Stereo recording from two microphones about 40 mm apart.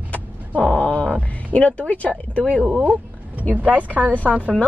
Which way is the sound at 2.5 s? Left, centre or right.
Right.